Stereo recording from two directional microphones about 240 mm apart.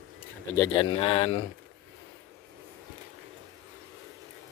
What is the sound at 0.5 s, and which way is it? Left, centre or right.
Speech, centre.